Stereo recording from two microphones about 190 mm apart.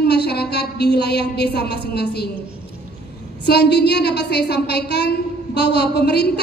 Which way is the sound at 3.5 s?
60° left (ahead or behind).